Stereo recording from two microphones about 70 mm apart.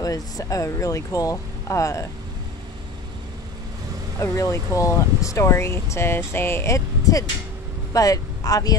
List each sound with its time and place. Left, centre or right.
0.0 s speech: left
4.2 s speech: left
7.9 s speech: left